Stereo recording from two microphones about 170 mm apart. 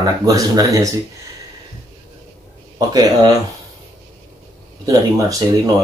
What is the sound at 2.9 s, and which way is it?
Speech, 25° right (ahead or behind).